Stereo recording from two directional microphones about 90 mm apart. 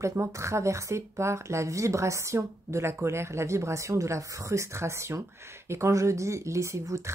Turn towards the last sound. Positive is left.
turn(degrees=-35)  # may be behind; listen again after turning